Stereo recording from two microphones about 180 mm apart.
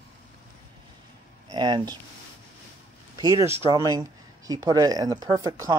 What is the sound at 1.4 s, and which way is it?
Speech, 25° right (ahead or behind).